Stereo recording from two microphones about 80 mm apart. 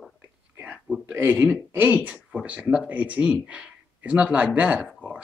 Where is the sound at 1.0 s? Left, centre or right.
Right.